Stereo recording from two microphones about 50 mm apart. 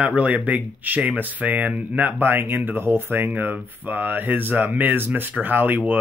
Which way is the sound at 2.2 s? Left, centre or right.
Right.